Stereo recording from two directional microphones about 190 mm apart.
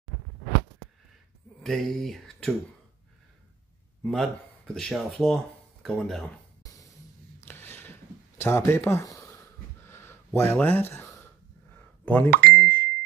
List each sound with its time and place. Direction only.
1.6 s speech: centre (ahead or behind)
4.0 s speech: centre (ahead or behind)
7.4 s a sound: 10° left (ahead or behind)
12.3 s speech: 55° right (ahead or behind)
12.5 s plop: 10° left (ahead or behind)